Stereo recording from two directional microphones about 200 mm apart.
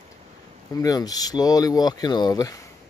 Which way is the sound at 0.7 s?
20° left (ahead or behind).